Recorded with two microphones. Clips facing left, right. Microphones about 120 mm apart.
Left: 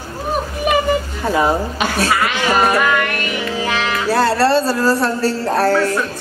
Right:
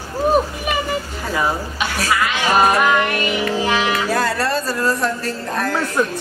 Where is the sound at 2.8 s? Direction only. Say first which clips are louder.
Right 1 dB; 15° right (ahead or behind).